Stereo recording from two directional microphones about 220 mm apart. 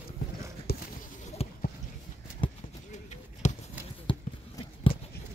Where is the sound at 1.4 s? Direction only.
25° left (ahead or behind).